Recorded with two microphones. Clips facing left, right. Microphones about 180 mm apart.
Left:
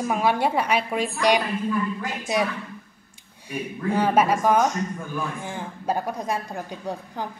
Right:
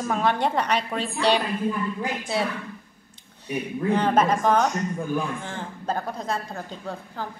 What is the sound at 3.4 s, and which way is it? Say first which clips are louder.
A woman's voice: right 3 dB; 10° left (ahead or behind).